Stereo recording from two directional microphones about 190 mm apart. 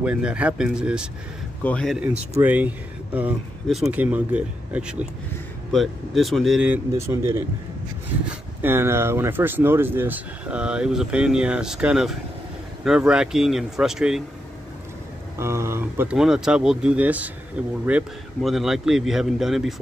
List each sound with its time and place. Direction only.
0.0 s speech: 5° right (ahead or behind)
1.6 s speech: 5° left (ahead or behind)
2.3 s speech: 10° right (ahead or behind)
15.3 s speech: 15° right (ahead or behind)